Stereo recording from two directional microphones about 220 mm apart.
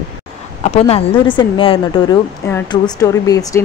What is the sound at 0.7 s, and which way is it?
A woman's voice, 25° left (ahead or behind).